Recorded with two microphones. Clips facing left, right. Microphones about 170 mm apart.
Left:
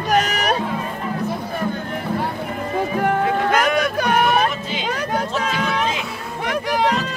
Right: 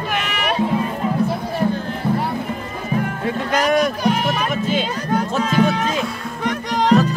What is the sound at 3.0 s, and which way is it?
Music, 55° left (ahead or behind).